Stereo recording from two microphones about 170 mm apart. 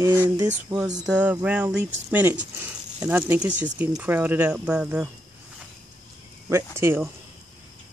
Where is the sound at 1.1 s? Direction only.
5° right (ahead or behind).